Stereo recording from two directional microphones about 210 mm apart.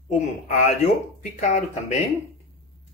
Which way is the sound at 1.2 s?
35° left (ahead or behind).